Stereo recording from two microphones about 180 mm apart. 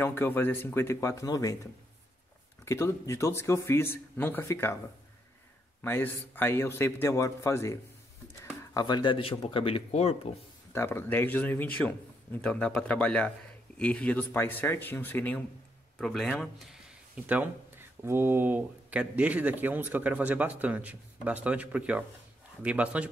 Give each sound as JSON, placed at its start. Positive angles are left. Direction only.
{"t": 0.0, "sound": "a man's voice", "side_deg": 10}
{"t": 5.8, "sound": "a man's voice", "side_deg": 10}
{"t": 10.7, "sound": "a man's voice", "side_deg": 15}